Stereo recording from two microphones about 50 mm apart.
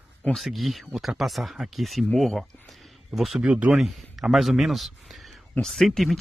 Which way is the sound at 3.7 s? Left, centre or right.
Centre.